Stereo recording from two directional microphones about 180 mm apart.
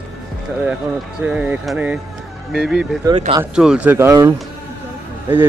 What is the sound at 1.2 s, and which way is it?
Speech, 5° right (ahead or behind).